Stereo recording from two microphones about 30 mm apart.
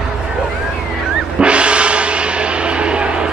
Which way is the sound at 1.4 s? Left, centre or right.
Right.